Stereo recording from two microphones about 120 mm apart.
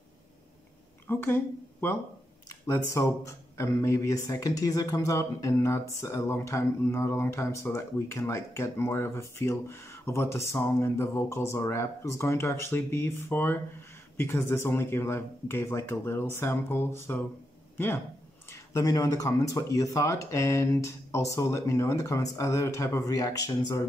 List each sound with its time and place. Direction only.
1.0 s a woman's voice: 15° left (ahead or behind)
18.5 s speech: 25° left (ahead or behind)